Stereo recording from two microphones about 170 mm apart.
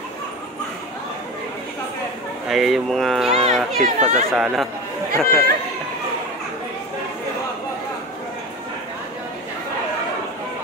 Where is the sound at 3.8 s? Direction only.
45° right (ahead or behind).